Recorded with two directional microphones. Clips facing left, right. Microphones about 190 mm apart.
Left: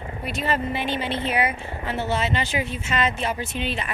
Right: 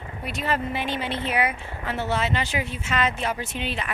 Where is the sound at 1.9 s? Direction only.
20° left (ahead or behind).